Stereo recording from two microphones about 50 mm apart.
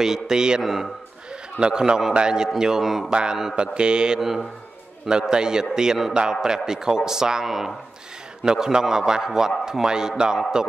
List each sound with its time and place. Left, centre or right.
0.0 s speech: centre
0.6 s a man's voice: centre
1.6 s a man's voice: centre
3.1 s mantra: centre
3.5 s speech: centre